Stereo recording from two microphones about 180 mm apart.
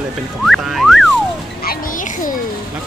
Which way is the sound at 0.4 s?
Centre (ahead or behind).